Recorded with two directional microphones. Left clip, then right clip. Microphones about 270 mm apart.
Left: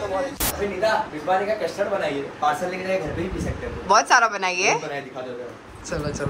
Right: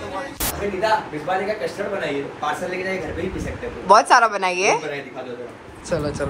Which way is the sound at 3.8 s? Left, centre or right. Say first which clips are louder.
Right 3 dB; centre.